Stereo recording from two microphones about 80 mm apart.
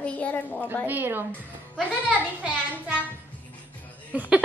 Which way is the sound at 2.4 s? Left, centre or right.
Centre.